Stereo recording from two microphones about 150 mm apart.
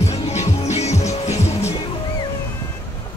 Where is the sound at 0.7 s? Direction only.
45° left (ahead or behind).